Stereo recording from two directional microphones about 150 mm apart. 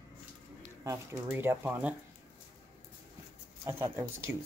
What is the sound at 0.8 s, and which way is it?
Speech, 15° right (ahead or behind).